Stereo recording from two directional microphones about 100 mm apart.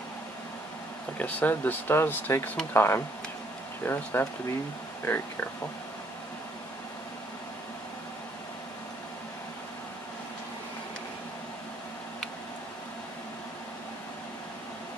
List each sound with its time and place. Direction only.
1.2 s speech: 15° left (ahead or behind)